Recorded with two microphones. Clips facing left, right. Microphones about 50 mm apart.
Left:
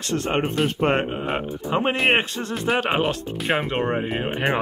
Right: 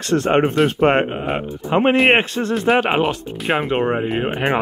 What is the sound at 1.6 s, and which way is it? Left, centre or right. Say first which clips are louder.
Speech: right 7 dB; right.